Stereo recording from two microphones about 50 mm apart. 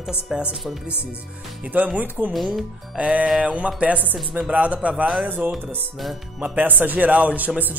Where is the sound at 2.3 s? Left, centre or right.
Centre.